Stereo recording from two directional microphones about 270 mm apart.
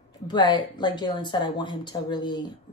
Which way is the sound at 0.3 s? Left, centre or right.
Centre.